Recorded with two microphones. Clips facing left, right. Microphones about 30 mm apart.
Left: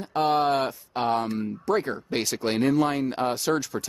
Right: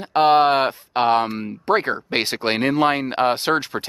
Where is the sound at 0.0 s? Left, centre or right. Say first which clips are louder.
Right 8 dB; right.